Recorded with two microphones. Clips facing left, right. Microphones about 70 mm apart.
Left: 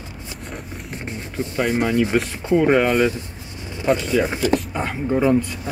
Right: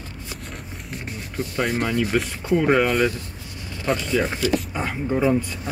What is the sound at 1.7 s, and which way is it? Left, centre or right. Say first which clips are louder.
Speech: left 5 dB; centre.